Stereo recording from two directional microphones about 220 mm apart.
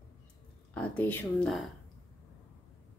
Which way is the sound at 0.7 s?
5° left (ahead or behind).